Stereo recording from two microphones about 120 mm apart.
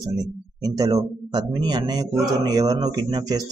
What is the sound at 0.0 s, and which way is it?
Speech, 35° right (ahead or behind).